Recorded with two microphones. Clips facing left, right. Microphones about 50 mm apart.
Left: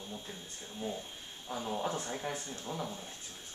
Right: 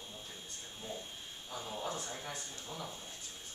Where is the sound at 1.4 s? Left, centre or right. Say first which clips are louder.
Left 5 dB; left.